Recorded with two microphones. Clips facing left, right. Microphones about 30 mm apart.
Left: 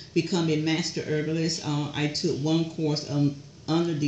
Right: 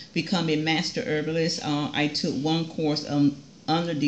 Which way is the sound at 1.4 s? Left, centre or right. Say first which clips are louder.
Right 3 dB; right.